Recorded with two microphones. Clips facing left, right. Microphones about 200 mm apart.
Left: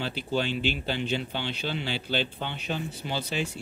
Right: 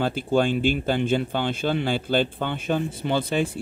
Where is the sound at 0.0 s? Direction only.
50° right (ahead or behind).